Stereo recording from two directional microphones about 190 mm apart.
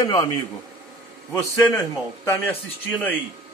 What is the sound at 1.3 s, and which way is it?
A man's voice, 15° left (ahead or behind).